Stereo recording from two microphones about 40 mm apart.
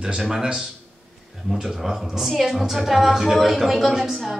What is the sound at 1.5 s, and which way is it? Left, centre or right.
A woman's voice, centre.